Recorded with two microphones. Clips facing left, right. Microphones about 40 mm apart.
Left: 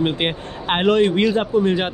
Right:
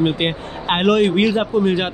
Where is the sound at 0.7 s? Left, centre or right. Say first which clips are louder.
Right 1 dB; right.